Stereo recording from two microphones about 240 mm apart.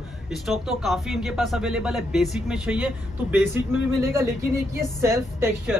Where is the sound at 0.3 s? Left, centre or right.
Centre.